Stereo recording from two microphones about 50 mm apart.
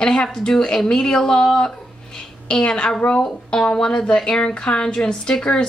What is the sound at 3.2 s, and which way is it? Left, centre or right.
Speech, centre.